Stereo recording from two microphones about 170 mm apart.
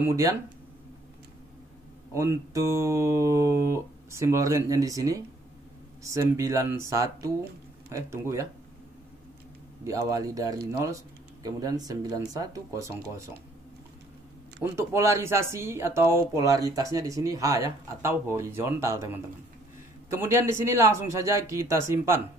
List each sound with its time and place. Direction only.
0.0 s speech: 20° right (ahead or behind)
2.1 s speech: 15° right (ahead or behind)
9.8 s speech: 20° right (ahead or behind)
14.6 s speech: 15° right (ahead or behind)